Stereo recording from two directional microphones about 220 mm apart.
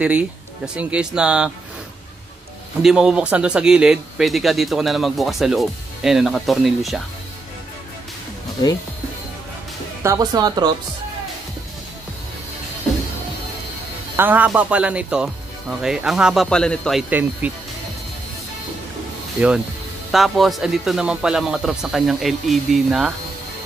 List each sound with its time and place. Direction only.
0.0 s speech: 5° right (ahead or behind)
2.8 s speech: 5° right (ahead or behind)
10.0 s speech: 15° right (ahead or behind)
14.1 s speech: 10° right (ahead or behind)
17.1 s speech: 5° right (ahead or behind)
20.1 s speech: centre (ahead or behind)